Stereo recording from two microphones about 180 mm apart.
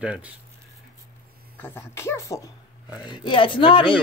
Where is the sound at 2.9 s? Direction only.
25° left (ahead or behind).